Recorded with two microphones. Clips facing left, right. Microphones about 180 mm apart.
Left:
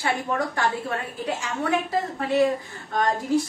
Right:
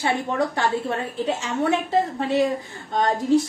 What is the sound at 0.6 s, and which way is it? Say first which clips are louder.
A woman's voice: right 3 dB; 25° right (ahead or behind).